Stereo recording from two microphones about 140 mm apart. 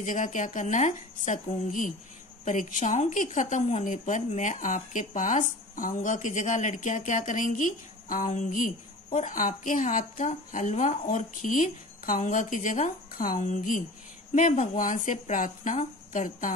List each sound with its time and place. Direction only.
0.0 s speech: 65° left (ahead or behind)